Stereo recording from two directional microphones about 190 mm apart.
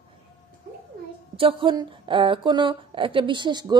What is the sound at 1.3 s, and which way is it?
A woman's voice, 30° right (ahead or behind).